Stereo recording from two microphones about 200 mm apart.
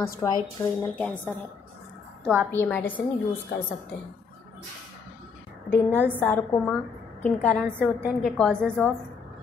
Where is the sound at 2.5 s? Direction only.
10° left (ahead or behind).